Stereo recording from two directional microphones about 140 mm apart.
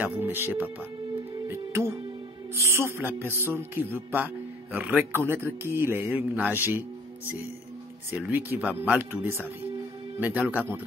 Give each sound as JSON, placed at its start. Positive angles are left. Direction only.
{"t": 0.0, "sound": "speech", "side_deg": -15}
{"t": 2.5, "sound": "a man's voice", "side_deg": -20}
{"t": 8.3, "sound": "a man's voice", "side_deg": -15}